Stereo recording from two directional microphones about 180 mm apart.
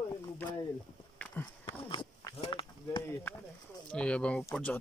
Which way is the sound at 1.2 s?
10° left (ahead or behind).